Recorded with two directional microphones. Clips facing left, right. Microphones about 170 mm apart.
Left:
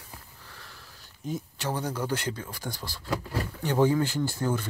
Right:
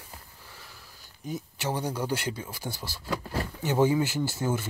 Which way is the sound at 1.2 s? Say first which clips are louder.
Left 1 dB; centre (ahead or behind).